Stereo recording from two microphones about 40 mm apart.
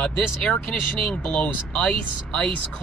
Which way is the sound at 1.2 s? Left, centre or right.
Left.